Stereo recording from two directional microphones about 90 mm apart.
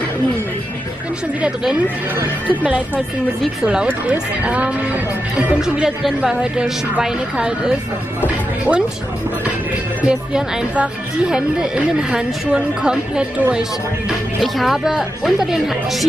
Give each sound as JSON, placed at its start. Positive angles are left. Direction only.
{"t": 1.4, "sound": "a woman's voice", "side_deg": -10}
{"t": 3.6, "sound": "a woman's voice", "side_deg": -15}
{"t": 5.6, "sound": "a woman's voice", "side_deg": -5}
{"t": 10.0, "sound": "a woman's voice", "side_deg": -10}
{"t": 14.4, "sound": "speech", "side_deg": 0}